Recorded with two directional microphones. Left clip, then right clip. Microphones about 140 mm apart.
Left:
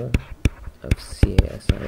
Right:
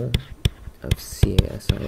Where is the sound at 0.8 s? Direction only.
20° right (ahead or behind).